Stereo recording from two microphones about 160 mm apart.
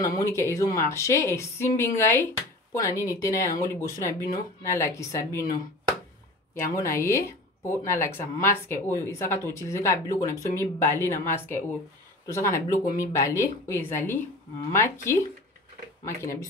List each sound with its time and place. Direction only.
0.0 s speech: 20° left (ahead or behind)
6.6 s speech: 20° left (ahead or behind)